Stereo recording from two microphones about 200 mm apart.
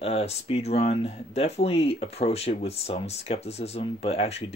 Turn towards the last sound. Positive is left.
turn(degrees=30)  # may be behind; listen again after turning